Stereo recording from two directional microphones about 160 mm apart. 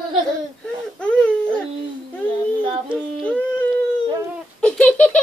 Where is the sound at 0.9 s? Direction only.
5° left (ahead or behind).